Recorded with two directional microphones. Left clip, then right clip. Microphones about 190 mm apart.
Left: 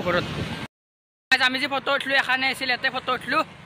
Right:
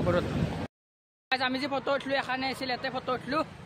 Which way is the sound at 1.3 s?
Centre (ahead or behind).